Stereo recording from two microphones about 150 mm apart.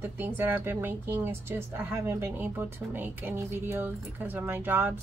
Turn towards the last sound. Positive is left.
turn(degrees=-10)  # may be behind; listen again after turning